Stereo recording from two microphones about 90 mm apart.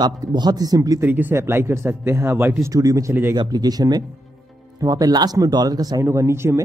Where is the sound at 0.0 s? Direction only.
50° right (ahead or behind).